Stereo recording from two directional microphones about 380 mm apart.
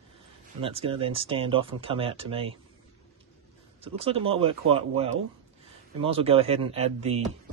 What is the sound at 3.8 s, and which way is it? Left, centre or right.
Speech, centre.